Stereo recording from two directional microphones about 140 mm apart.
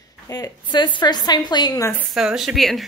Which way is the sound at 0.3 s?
30° left (ahead or behind).